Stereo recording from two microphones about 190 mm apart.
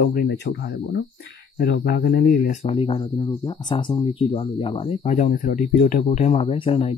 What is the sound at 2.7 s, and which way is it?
Speech, 30° left (ahead or behind).